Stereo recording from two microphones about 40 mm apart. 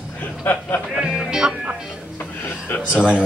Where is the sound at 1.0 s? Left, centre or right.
Centre.